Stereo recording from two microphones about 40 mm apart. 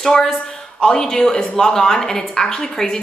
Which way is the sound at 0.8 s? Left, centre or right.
Centre.